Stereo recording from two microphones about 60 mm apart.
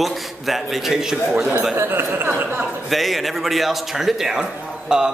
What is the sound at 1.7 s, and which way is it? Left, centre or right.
Speech, right.